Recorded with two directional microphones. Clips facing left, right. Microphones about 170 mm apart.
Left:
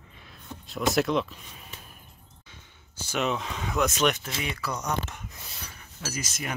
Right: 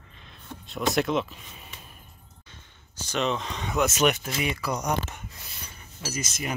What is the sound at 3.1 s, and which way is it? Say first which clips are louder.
Speech: right 1 dB; 5° left (ahead or behind).